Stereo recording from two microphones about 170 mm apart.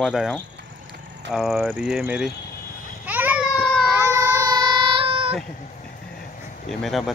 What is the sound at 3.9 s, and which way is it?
Child singing, 20° right (ahead or behind).